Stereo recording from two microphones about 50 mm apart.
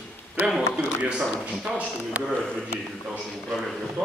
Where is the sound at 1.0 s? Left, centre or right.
Right.